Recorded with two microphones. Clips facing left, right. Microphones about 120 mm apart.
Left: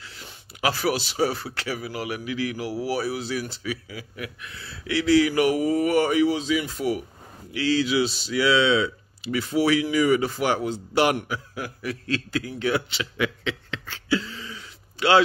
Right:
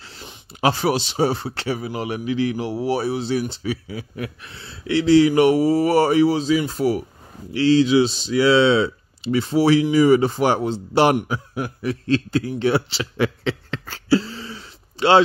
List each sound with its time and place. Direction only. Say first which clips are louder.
0.0 s a man's voice: right 3 dB; 30° right (ahead or behind)